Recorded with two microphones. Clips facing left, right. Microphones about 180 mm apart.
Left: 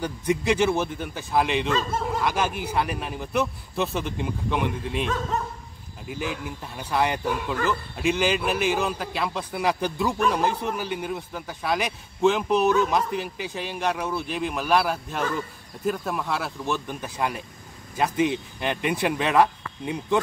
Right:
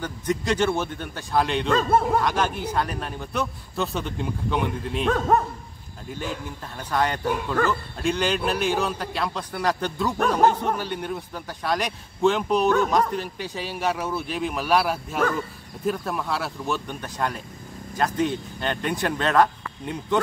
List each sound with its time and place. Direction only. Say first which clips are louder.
0.0 s a man's voice: left 2 dB; 10° left (ahead or behind)
1.7 s speech: right 5 dB; 55° right (ahead or behind)
2.2 s a man's voice: right 1 dB; 10° left (ahead or behind)
5.0 s speech: right 9 dB; 55° right (ahead or behind)
6.8 s a man's voice: even; 10° left (ahead or behind)